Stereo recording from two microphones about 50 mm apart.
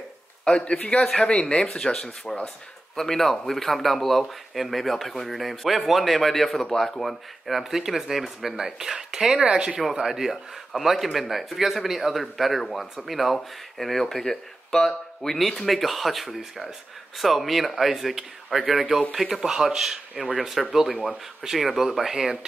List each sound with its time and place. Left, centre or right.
0.6 s speech: left; by 22.4 s centre